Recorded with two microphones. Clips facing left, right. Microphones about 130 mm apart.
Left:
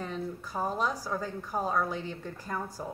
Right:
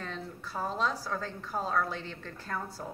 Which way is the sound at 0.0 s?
15° left (ahead or behind).